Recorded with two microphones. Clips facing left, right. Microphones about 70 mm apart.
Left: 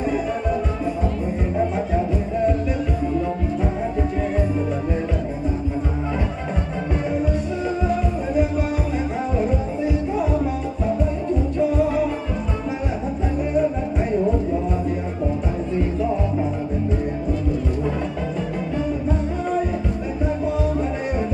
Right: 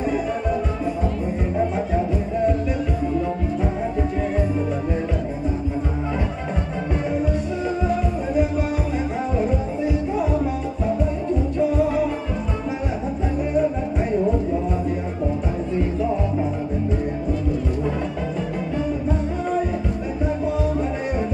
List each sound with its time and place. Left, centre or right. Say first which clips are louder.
0.0 s music: even; centre
3.8 s music: even; centre
7.1 s music: even; centre
11.5 s music: even; centre
13.5 s music: even; centre
16.0 s music: even; centre
19.0 s music: even; centre